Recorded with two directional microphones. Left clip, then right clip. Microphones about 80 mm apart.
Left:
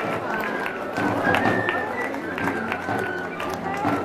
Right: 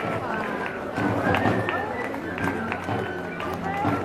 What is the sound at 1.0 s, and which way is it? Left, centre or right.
Music, left.